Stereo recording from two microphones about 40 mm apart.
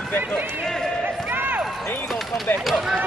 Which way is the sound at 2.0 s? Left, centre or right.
Centre.